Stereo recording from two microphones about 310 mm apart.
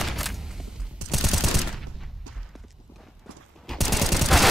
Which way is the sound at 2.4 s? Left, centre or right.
Centre.